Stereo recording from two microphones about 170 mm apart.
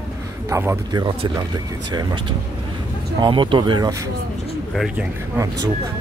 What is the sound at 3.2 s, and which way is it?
Speech, 25° right (ahead or behind).